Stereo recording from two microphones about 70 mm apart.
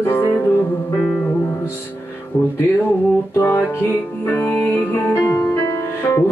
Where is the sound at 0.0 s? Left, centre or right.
Left.